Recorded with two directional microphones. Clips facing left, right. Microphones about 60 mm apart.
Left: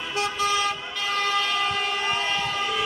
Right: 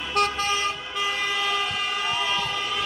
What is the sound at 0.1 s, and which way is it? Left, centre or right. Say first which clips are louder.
Vehicle: right 2 dB; right.